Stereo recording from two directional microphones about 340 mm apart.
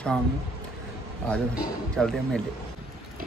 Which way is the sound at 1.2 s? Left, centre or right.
Centre.